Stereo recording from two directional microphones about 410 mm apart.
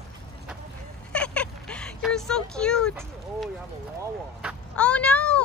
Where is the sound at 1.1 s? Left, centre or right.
Centre.